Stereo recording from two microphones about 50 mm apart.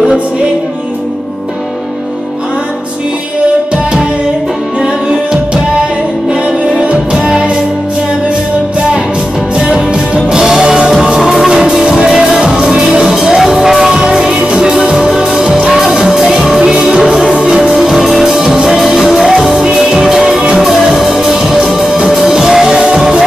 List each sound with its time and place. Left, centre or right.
4.8 s music: centre
6.8 s music: right
9.6 s music: centre
14.3 s music: right
14.7 s music: centre